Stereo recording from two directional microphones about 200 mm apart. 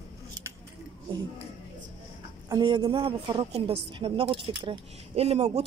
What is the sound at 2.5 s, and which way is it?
A woman's voice, 20° right (ahead or behind).